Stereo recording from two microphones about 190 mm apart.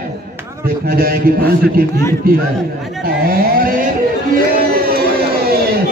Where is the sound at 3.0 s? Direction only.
50° right (ahead or behind).